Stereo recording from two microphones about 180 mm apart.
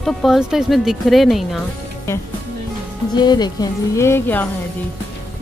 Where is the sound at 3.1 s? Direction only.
25° left (ahead or behind).